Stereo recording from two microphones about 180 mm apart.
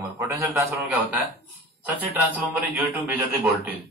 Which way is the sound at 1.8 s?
10° right (ahead or behind).